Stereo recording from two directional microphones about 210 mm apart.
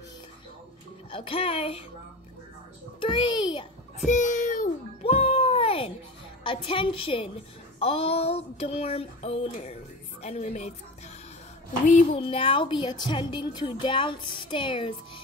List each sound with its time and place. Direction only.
1.1 s a woman's voice: 25° left (ahead or behind)
3.0 s a woman's voice: 20° left (ahead or behind)
4.1 s music: 35° left (ahead or behind)
6.4 s a woman's voice: 25° left (ahead or behind)
11.8 s a woman's voice: 30° left (ahead or behind)